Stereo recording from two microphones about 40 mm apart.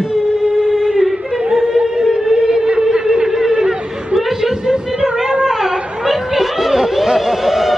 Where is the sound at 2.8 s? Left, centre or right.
Centre.